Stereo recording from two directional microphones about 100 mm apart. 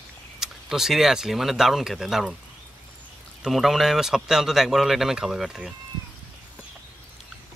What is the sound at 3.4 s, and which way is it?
Speech, centre (ahead or behind).